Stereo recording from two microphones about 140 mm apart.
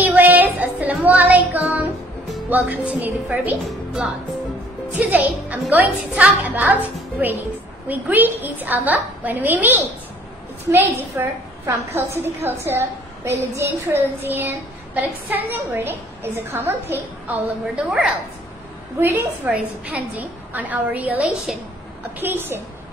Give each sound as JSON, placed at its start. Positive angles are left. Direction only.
{"t": 0.0, "sound": "music", "side_deg": -10}
{"t": 2.5, "sound": "a woman's voice", "side_deg": -10}